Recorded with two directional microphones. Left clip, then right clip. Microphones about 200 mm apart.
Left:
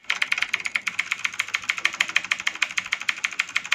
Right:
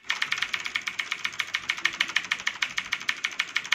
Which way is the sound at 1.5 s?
15° left (ahead or behind).